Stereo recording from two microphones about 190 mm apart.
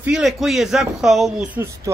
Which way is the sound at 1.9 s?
15° right (ahead or behind).